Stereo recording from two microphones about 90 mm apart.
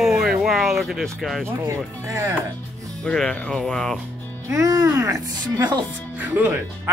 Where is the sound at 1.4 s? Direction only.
35° right (ahead or behind).